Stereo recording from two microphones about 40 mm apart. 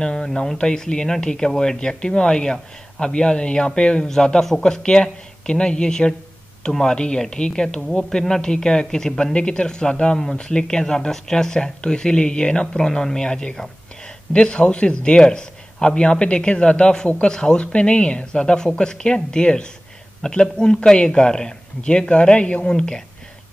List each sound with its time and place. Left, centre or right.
0.0 s speech: centre
9.2 s speech: left
22.7 s speech: centre